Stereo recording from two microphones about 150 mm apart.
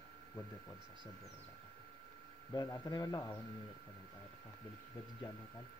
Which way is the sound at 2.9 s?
25° left (ahead or behind).